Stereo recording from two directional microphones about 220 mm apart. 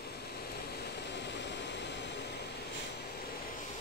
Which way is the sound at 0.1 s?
45° left (ahead or behind).